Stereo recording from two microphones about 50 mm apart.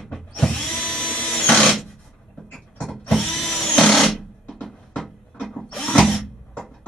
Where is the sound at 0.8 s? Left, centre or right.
Left.